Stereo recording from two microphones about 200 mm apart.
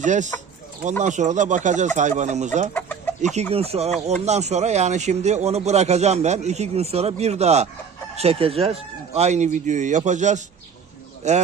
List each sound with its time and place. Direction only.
0.0 s speech: 40° right (ahead or behind)